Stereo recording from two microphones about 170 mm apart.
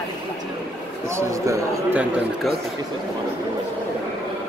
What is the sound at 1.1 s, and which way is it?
Speech, 20° right (ahead or behind).